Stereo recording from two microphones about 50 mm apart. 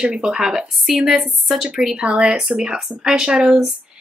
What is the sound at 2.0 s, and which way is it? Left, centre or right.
Speech, right.